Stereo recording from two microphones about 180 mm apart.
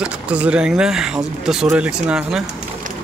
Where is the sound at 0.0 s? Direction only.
5° right (ahead or behind).